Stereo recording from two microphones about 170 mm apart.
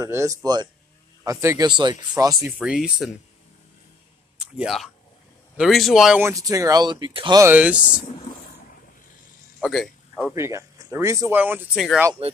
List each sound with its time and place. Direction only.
0.0 s speech: 15° right (ahead or behind)
2.6 s speech: 5° right (ahead or behind)
4.4 s speech: 5° right (ahead or behind)
6.2 s speech: 20° right (ahead or behind)
7.4 s speech: 10° right (ahead or behind)
9.6 s a sound: centre (ahead or behind)
10.3 s speech: 15° right (ahead or behind); by 12.0 s centre (ahead or behind)
12.2 s speech: 35° right (ahead or behind)